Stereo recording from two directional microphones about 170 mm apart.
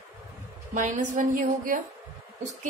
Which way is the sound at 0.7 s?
50° right (ahead or behind).